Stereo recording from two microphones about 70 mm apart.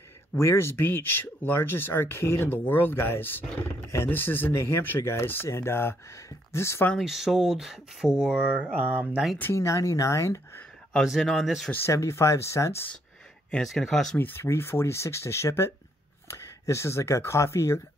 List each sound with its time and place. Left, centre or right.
0.4 s speech: left
7.0 s speech: centre
8.5 s speech: right
9.5 s speech: left
11.1 s speech: centre
11.9 s speech: left
13.6 s speech: centre
14.1 s speech: left